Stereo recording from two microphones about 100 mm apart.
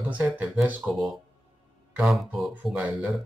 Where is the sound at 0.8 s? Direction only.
Centre (ahead or behind).